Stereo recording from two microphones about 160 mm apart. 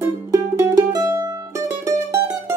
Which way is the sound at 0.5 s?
20° right (ahead or behind).